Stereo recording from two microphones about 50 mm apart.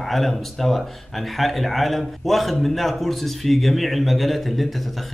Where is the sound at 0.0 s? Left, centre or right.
Centre.